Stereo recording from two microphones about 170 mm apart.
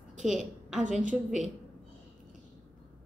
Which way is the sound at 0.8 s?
45° right (ahead or behind).